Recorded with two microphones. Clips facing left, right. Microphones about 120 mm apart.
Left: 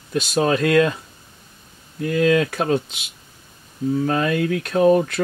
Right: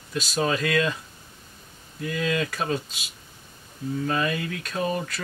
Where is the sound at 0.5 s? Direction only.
55° left (ahead or behind).